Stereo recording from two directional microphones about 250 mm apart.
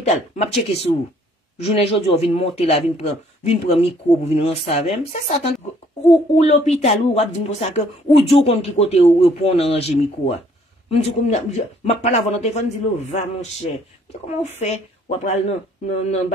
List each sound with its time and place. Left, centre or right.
0.0 s speech: left
14.6 s speech: left